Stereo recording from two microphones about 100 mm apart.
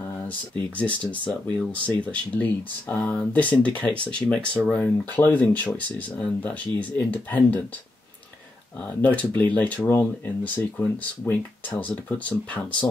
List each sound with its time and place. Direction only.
0.7 s speech: 15° left (ahead or behind)
9.0 s speech: 15° left (ahead or behind)
9.8 s speech: 25° left (ahead or behind)